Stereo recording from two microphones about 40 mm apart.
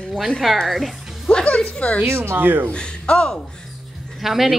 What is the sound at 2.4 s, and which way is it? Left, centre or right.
Speech, right.